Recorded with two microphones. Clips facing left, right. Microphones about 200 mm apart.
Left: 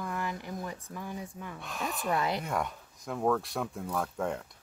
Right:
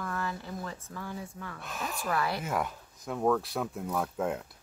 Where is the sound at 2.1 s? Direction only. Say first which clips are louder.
Left 1 dB; 20° left (ahead or behind).